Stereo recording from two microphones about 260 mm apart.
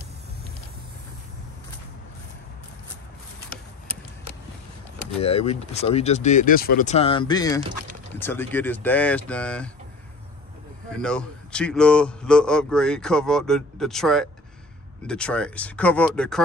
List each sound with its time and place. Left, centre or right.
5.2 s speech: left; by 9.7 s centre
10.9 s speech: centre